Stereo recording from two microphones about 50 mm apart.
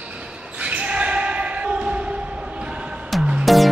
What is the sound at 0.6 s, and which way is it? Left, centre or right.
Basketball bounce, right.